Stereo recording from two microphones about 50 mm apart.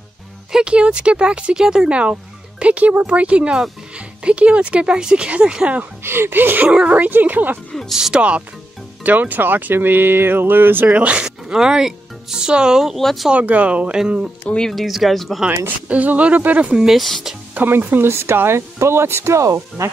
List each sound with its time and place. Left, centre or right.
0.5 s speech: centre
6.0 s a woman's voice: right
8.1 s speech: right
11.0 s speech: right
11.2 s speech: centre
12.9 s speech: centre
13.3 s speech: right
13.9 s speech: centre
14.6 s speech: centre
15.9 s speech: right
16.8 s speech: centre
17.6 s speech: right
17.9 s speech: right
19.3 s speech: right